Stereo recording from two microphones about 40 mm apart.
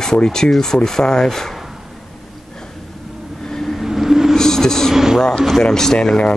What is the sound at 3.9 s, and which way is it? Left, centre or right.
Vehicle, centre.